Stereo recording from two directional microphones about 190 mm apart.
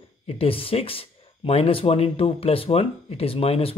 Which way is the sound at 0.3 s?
30° left (ahead or behind).